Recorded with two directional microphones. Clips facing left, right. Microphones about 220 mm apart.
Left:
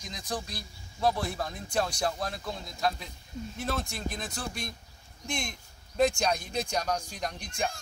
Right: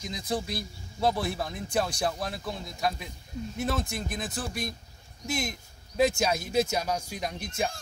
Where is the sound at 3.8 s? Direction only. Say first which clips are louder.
Right 2 dB; 20° right (ahead or behind).